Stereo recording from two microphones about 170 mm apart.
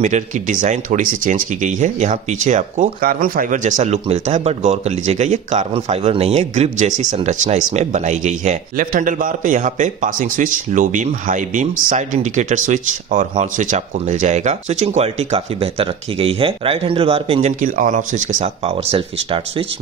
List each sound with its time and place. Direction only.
0.0 s speech: 50° right (ahead or behind)